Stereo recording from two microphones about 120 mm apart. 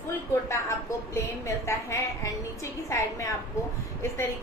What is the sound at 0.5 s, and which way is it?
A woman's voice, 25° left (ahead or behind).